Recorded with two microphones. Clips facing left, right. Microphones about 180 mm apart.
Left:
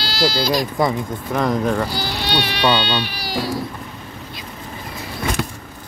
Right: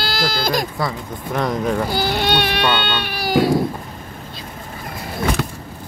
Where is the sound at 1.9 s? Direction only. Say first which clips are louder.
Right 4 dB; 55° right (ahead or behind).